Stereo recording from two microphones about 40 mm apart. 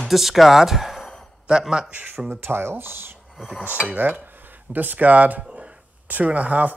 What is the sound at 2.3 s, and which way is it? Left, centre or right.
Speech, right.